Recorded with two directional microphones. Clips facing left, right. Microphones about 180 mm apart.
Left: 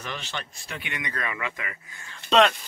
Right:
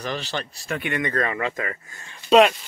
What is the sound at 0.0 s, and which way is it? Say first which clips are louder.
Speech: right 7 dB; 35° right (ahead or behind).